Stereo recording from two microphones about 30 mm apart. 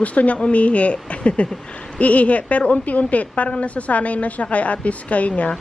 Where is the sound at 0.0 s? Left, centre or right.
Left.